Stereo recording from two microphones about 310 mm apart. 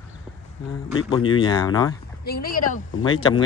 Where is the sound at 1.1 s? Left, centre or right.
Centre.